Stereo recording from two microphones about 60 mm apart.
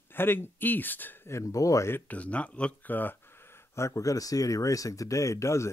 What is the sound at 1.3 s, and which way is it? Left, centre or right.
Speech, left.